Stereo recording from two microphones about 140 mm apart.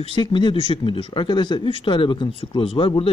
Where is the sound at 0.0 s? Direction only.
35° left (ahead or behind).